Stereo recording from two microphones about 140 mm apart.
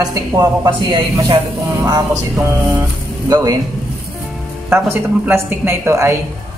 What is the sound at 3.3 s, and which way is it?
Speech, 25° right (ahead or behind).